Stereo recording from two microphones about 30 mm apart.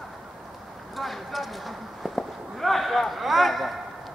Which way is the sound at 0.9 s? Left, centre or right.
Centre.